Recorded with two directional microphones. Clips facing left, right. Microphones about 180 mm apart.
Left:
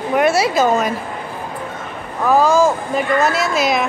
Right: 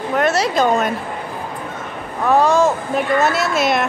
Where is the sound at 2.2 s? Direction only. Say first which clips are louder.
Left 1 dB; centre (ahead or behind).